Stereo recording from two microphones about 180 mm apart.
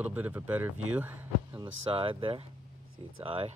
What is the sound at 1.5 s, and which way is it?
Speech, 30° right (ahead or behind).